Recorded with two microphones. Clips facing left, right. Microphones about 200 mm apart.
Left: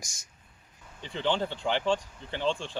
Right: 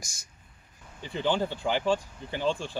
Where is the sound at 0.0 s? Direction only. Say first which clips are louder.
Even; 20° left (ahead or behind).